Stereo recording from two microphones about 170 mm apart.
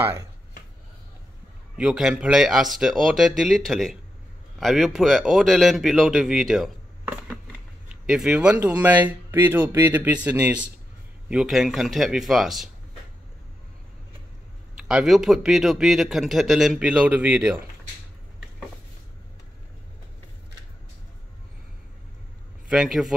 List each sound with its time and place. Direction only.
0.0 s speech: 15° right (ahead or behind)
1.8 s a man's voice: 5° right (ahead or behind)
14.9 s a man's voice: 5° right (ahead or behind)
22.7 s a man's voice: 5° right (ahead or behind)